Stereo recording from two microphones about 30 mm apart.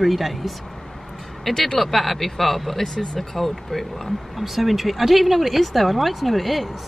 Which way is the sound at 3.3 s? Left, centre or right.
Centre.